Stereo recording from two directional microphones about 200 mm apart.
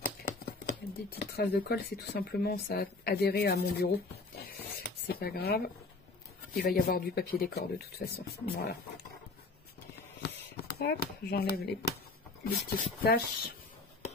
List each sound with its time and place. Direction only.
0.0 s speech: 50° left (ahead or behind)
10.2 s speech: 55° left (ahead or behind)